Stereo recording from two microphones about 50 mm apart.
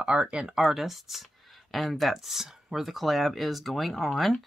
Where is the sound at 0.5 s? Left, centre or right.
Centre.